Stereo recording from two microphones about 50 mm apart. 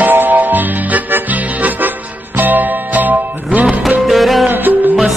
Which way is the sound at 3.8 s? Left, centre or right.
Centre.